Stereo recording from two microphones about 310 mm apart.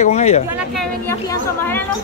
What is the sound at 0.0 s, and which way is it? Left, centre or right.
Speech, left.